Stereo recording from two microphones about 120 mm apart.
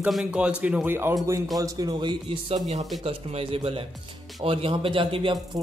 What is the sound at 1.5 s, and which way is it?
A man's voice, 30° right (ahead or behind).